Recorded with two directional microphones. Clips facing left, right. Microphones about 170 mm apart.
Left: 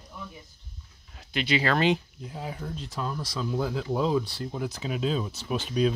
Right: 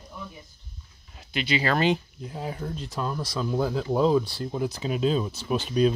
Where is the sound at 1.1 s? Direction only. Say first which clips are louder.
Even; centre (ahead or behind).